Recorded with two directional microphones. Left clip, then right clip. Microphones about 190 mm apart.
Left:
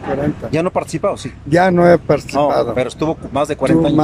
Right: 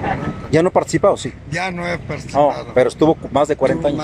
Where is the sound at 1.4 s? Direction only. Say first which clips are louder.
Left 13 dB; 50° left (ahead or behind).